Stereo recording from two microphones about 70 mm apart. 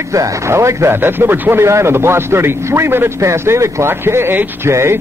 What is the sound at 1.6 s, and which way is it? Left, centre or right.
A man's voice, right.